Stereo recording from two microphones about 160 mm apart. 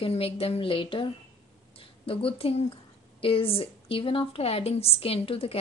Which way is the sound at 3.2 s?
35° left (ahead or behind).